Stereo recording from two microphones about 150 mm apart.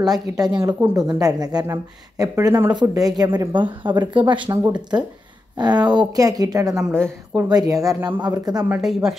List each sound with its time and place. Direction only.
0.0 s a woman's voice: 25° right (ahead or behind)
8.6 s speech: 5° right (ahead or behind)